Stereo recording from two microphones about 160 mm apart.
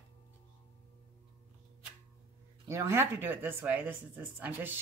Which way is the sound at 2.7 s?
20° right (ahead or behind).